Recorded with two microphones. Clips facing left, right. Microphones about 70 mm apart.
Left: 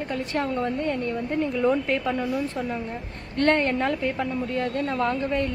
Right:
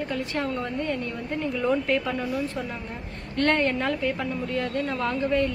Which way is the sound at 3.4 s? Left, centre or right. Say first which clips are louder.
Left 2 dB; left.